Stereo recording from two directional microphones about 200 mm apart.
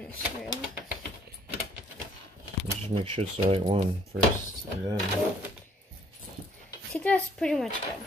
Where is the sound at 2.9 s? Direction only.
30° right (ahead or behind).